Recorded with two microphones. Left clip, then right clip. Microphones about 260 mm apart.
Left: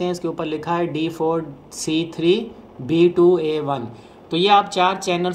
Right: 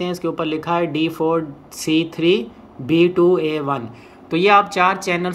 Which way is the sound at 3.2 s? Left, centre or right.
Right.